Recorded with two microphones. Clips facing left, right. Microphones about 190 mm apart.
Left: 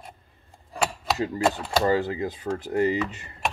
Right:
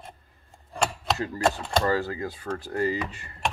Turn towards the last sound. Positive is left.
turn(degrees=20)  # may be behind; listen again after turning